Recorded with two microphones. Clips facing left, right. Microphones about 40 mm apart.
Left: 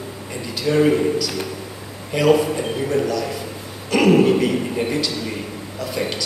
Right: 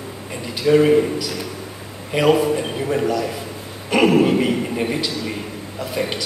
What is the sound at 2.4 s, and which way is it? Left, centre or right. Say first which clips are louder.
A man's voice: right 2 dB; centre.